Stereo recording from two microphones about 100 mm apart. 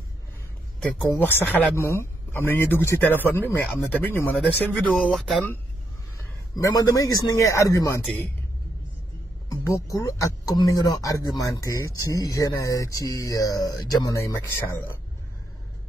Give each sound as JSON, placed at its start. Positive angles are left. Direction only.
{"t": 1.1, "sound": "speech", "side_deg": 20}
{"t": 4.8, "sound": "speech", "side_deg": 0}
{"t": 6.1, "sound": "a man's voice", "side_deg": 35}
{"t": 9.5, "sound": "speech", "side_deg": 35}